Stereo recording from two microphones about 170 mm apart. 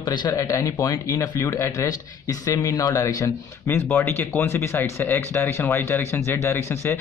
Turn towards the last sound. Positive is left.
turn(degrees=15)  # may be behind; listen again after turning